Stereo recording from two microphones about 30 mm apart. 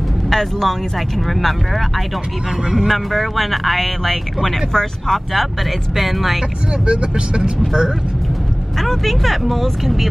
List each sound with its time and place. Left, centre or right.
0.3 s speech: centre
2.9 s speech: centre
4.7 s speech: centre
5.9 s speech: centre
6.9 s speech: right
8.7 s speech: centre